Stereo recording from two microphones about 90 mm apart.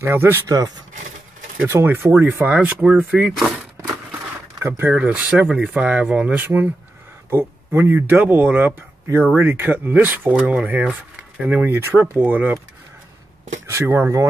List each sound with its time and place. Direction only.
0.0 s speech: 25° right (ahead or behind)
1.7 s speech: 30° right (ahead or behind); by 3.5 s 10° right (ahead or behind)
4.6 s speech: 25° right (ahead or behind)
5.5 s speech: 5° right (ahead or behind)
13.7 s speech: 30° right (ahead or behind)